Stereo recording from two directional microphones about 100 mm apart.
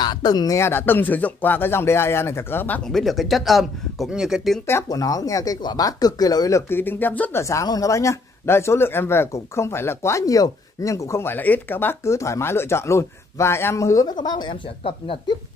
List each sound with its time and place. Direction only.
0.0 s speech: 45° left (ahead or behind)
0.6 s speech: 25° left (ahead or behind)
2.9 s speech: centre (ahead or behind)
4.8 s speech: 35° left (ahead or behind)
6.7 s speech: 20° left (ahead or behind)
7.4 s speech: 35° left (ahead or behind); by 15.3 s 60° left (ahead or behind)